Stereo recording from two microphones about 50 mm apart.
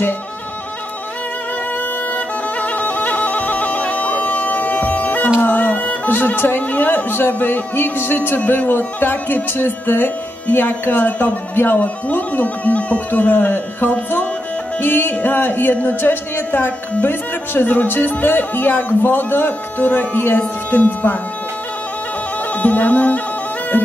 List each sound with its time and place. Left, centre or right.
2.1 s bagpipes: left
5.4 s a woman's voice: left
22.6 s music: left